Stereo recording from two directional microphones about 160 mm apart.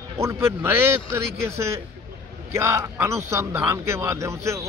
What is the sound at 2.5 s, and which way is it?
A man's voice, 15° right (ahead or behind).